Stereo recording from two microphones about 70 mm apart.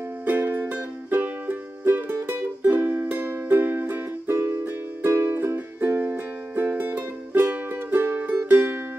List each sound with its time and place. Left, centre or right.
0.2 s music: right